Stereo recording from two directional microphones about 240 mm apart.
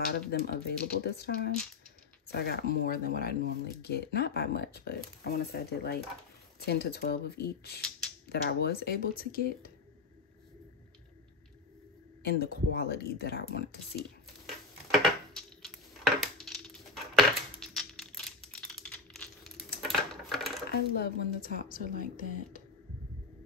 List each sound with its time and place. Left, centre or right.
0.1 s speech: left
12.2 s speech: left
13.9 s a sound: centre
20.9 s speech: left